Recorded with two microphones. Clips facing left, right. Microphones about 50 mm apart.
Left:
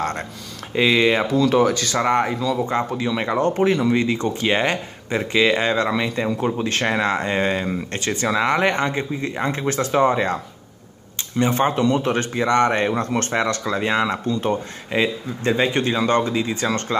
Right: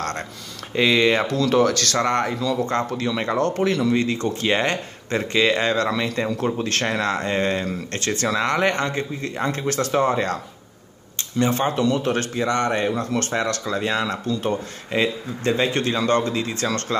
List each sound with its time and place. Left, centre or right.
0.0 s speech: centre; by 13.3 s left
13.3 s speech: left
14.9 s speech: centre
15.6 s speech: left